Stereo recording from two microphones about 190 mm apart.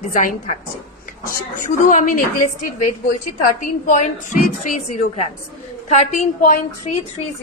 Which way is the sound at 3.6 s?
40° left (ahead or behind).